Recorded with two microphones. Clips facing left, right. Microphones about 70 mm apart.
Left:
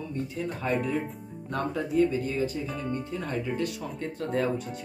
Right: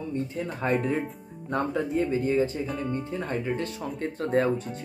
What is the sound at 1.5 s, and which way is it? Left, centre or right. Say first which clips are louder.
Speech: right 3 dB; right.